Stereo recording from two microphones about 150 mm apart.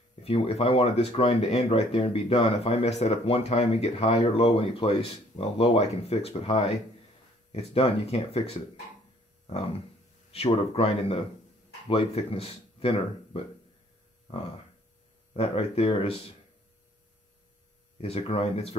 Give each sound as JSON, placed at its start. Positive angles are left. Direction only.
{"t": 0.1, "sound": "speech", "side_deg": 40}
{"t": 10.3, "sound": "speech", "side_deg": 40}
{"t": 14.2, "sound": "hum", "side_deg": 40}
{"t": 15.3, "sound": "speech", "side_deg": 40}
{"t": 18.0, "sound": "speech", "side_deg": 45}